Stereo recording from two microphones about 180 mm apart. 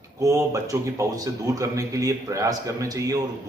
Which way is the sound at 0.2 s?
20° right (ahead or behind).